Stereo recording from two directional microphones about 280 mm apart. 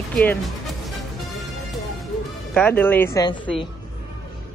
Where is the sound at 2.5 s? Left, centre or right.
Centre.